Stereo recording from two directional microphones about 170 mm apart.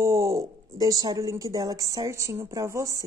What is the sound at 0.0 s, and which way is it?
Speech, 20° right (ahead or behind).